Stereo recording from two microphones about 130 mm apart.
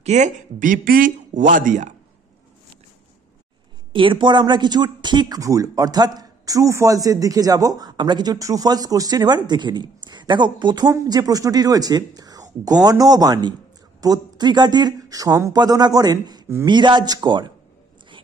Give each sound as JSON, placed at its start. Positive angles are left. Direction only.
{"t": 0.0, "sound": "speech", "side_deg": -65}
{"t": 3.9, "sound": "speech", "side_deg": -40}